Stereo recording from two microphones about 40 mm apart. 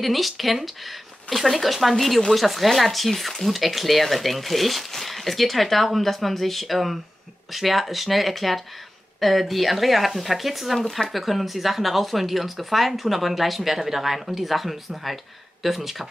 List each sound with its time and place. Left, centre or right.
0.0 s speech: centre